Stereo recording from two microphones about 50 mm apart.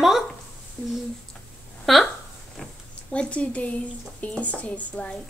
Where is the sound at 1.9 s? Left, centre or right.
Centre.